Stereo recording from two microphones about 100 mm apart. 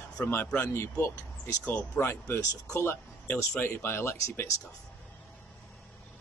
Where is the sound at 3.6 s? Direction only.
25° left (ahead or behind).